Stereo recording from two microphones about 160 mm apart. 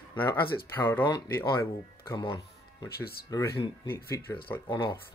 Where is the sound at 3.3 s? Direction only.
20° left (ahead or behind).